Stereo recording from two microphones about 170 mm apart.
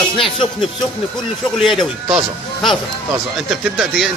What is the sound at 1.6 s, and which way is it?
Speech, centre (ahead or behind).